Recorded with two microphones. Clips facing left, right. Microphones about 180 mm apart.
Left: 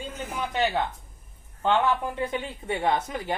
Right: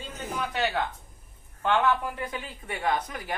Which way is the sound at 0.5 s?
20° left (ahead or behind).